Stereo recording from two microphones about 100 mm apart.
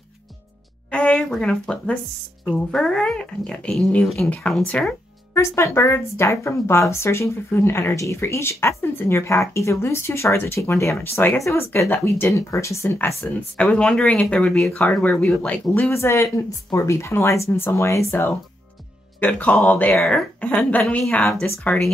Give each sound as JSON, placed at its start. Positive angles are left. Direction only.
{"t": 0.9, "sound": "speech", "side_deg": 10}
{"t": 5.3, "sound": "speech", "side_deg": 30}
{"t": 13.6, "sound": "speech", "side_deg": 10}
{"t": 15.8, "sound": "speech", "side_deg": 25}
{"t": 19.1, "sound": "speech", "side_deg": 15}
{"t": 20.0, "sound": "speech", "side_deg": 0}
{"t": 20.3, "sound": "speech", "side_deg": 15}